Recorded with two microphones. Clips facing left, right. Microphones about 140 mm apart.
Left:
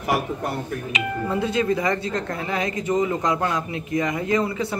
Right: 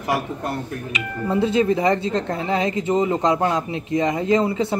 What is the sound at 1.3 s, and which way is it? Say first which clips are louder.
Speech: right 5 dB; 25° right (ahead or behind).